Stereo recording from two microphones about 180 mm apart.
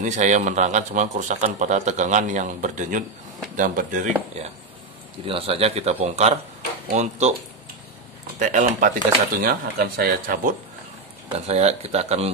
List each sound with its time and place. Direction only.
0.0 s a man's voice: 40° right (ahead or behind)
5.2 s speech: 30° right (ahead or behind)
8.4 s a man's voice: 45° right (ahead or behind)
11.2 s speech: 35° right (ahead or behind)